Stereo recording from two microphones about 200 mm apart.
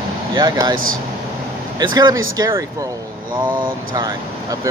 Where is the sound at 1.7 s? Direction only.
20° right (ahead or behind).